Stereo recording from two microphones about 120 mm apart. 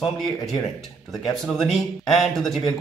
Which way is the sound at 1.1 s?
5° left (ahead or behind).